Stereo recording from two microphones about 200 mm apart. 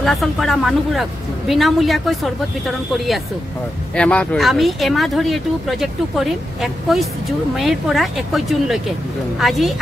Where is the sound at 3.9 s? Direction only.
5° left (ahead or behind).